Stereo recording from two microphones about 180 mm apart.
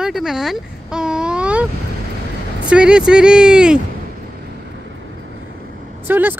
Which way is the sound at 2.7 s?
5° right (ahead or behind).